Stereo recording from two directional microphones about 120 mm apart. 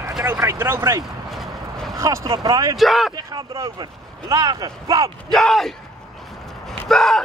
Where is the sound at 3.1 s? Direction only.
30° right (ahead or behind).